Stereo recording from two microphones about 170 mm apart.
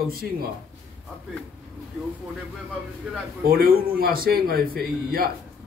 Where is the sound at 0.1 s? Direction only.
60° right (ahead or behind).